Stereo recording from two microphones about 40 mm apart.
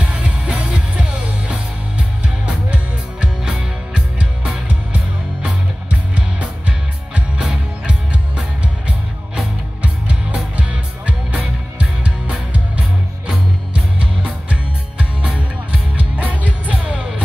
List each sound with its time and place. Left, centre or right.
0.0 s music: right
4.6 s music: right
7.3 s music: centre
9.3 s music: right
16.2 s music: right